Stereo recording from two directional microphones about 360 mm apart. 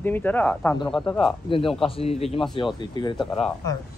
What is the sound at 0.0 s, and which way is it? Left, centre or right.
A man's voice, centre.